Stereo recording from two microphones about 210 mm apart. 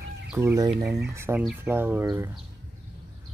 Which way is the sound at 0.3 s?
10° right (ahead or behind).